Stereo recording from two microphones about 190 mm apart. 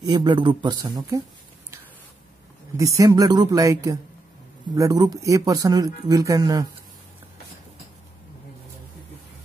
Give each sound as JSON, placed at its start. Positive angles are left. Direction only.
{"t": 0.0, "sound": "speech", "side_deg": -25}
{"t": 2.8, "sound": "speech", "side_deg": -15}